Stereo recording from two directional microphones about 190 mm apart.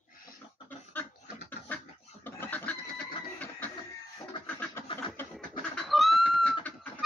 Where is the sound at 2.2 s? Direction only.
10° left (ahead or behind).